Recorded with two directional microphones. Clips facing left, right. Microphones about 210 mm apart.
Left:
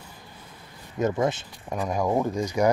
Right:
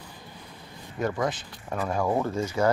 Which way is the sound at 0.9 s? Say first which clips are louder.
Left 3 dB; 20° left (ahead or behind).